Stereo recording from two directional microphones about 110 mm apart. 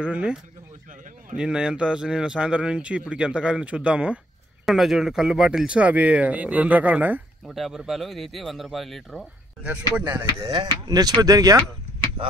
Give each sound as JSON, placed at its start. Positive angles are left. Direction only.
{"t": 0.0, "sound": "a man's voice", "side_deg": -10}
{"t": 7.4, "sound": "speech", "side_deg": 0}
{"t": 9.6, "sound": "a man's voice", "side_deg": -10}
{"t": 10.4, "sound": "speech", "side_deg": -40}